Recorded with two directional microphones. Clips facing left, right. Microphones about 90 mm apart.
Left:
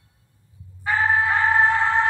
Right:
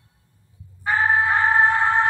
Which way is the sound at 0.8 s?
25° right (ahead or behind).